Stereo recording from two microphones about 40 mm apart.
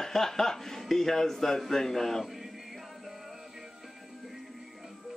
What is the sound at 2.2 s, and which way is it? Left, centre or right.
Music, centre.